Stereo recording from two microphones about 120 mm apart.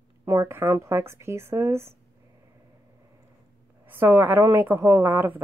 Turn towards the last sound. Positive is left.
turn(degrees=-15)  # may be behind; listen again after turning